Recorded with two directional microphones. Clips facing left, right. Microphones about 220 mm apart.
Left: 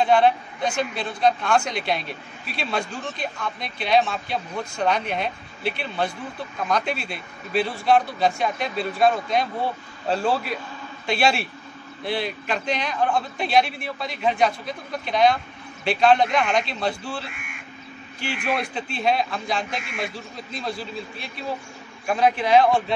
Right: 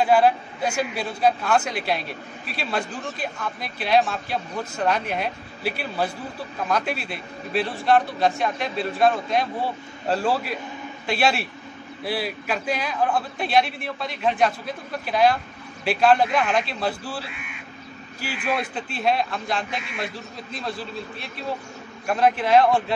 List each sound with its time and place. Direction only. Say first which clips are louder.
0.0 s a man's voice: even; 5° right (ahead or behind)
17.3 s speech: right 1 dB; 50° left (ahead or behind)
18.2 s a man's voice: even; centre (ahead or behind)